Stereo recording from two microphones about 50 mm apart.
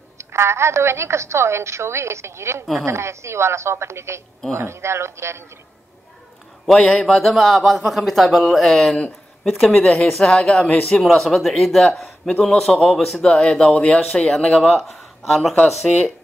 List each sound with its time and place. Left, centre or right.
0.2 s a woman's voice: right
6.6 s speech: centre
10.3 s speech: centre
11.0 s speech: centre
13.3 s speech: centre
14.7 s speech: centre